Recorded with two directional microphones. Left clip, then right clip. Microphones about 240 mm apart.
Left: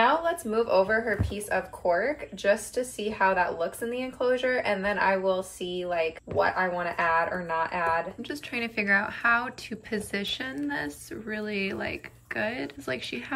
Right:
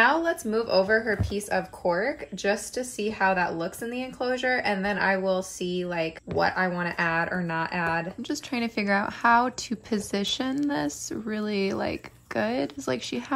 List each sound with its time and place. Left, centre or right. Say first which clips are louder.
0.0 s speech: right 2 dB; right
8.3 s speech: right 2 dB; centre